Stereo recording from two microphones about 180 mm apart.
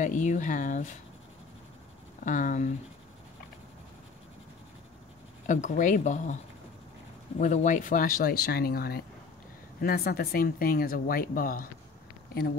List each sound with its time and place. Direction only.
0.0 s speech: 45° left (ahead or behind)
2.2 s speech: 45° left (ahead or behind)
5.5 s speech: 45° left (ahead or behind)
7.3 s speech: 45° left (ahead or behind)